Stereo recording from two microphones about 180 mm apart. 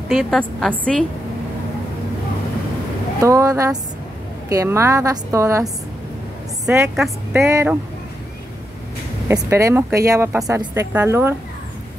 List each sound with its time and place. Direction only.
0.1 s a woman's voice: centre (ahead or behind)
3.2 s a woman's voice: 20° right (ahead or behind)
6.7 s a woman's voice: 10° right (ahead or behind)
9.3 s a woman's voice: 15° right (ahead or behind)